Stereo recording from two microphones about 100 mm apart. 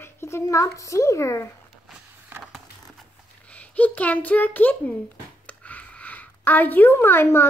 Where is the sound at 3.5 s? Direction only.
15° left (ahead or behind).